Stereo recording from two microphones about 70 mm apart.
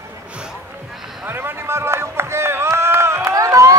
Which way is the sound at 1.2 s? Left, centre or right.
Right.